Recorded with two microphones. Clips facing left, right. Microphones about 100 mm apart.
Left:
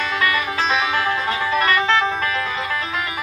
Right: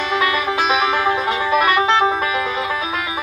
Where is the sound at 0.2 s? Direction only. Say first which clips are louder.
Right 1 dB; 20° right (ahead or behind).